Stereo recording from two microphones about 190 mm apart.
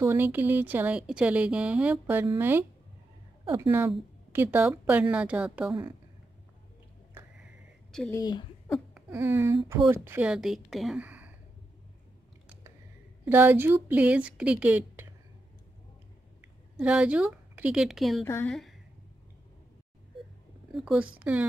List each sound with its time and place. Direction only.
0.0 s speech: 10° right (ahead or behind)
3.4 s a woman's voice: 25° right (ahead or behind)
4.3 s speech: 10° right (ahead or behind)
8.1 s speech: 20° left (ahead or behind)
8.6 s speech: centre (ahead or behind)
13.2 s speech: 10° right (ahead or behind)
16.3 s a woman's voice: 5° right (ahead or behind)
18.2 s a woman's voice: 10° left (ahead or behind)
18.5 s a sound: centre (ahead or behind)
20.7 s speech: 5° right (ahead or behind)